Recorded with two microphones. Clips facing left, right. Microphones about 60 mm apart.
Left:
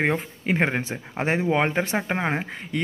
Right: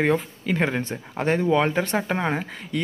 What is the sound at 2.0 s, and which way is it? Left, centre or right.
Speech, centre.